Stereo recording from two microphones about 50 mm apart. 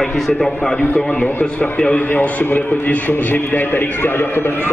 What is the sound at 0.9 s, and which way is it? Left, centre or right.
A man's voice, left.